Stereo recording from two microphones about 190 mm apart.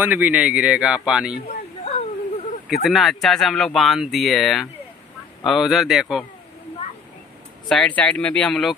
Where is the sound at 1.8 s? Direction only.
30° left (ahead or behind).